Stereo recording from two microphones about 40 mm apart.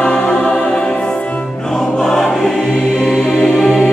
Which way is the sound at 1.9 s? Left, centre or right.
Centre.